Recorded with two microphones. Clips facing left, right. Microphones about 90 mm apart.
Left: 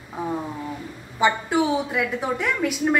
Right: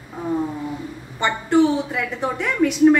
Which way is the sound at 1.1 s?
5° left (ahead or behind).